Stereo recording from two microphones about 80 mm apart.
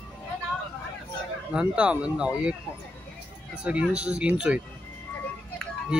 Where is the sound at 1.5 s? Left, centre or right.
Centre.